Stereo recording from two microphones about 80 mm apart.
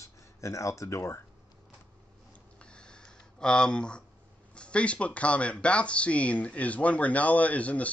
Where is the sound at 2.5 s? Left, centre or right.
Centre.